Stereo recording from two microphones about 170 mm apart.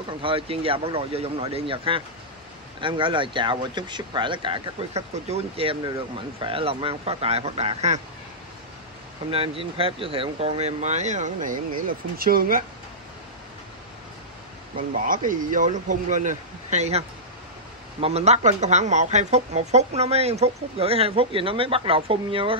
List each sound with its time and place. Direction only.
0.2 s speech: 30° right (ahead or behind)
9.3 s speech: 35° right (ahead or behind)
12.2 s speech: 60° right (ahead or behind)
14.8 s speech: 50° right (ahead or behind)
18.0 s speech: 40° right (ahead or behind)